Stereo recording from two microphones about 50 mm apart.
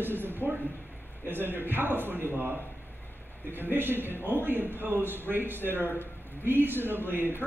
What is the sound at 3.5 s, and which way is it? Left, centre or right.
A man's voice, right.